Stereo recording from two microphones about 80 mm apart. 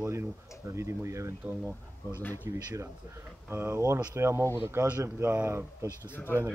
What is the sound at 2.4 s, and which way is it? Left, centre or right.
Speech, right.